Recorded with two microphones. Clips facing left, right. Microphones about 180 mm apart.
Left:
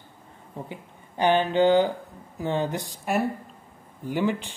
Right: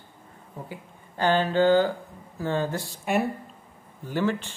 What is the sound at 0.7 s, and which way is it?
Speech, 15° left (ahead or behind).